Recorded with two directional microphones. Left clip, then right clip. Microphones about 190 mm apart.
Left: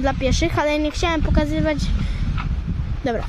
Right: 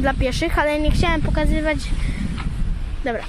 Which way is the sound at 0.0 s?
10° left (ahead or behind).